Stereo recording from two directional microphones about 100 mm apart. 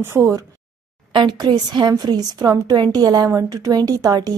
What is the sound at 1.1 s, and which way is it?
A woman's voice, 50° right (ahead or behind).